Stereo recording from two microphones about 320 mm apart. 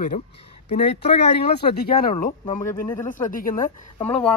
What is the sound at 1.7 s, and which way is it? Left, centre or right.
A woman's voice, left.